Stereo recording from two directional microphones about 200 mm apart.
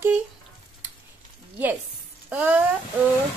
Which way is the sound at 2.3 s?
10° right (ahead or behind).